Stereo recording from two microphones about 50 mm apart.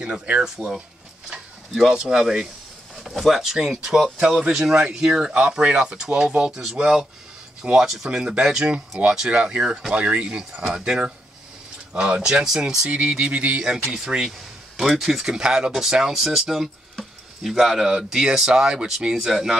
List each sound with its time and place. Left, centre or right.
0.0 s speech: right
1.3 s a sound: centre
2.0 s speech: centre; by 6.5 s right
6.5 s speech: centre
9.3 s speech: right
9.6 s speech: centre
9.9 s speech: right
13.9 s speech: centre